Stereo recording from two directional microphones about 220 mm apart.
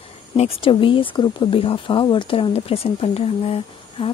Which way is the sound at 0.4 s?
25° left (ahead or behind).